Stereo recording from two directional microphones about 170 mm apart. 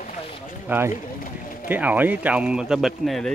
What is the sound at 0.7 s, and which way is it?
Speech, 15° right (ahead or behind).